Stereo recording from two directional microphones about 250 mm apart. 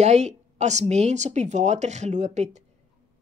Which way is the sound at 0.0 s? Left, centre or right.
Right.